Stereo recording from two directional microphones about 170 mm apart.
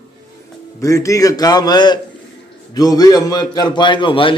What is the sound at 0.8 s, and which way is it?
A man's voice, 20° left (ahead or behind).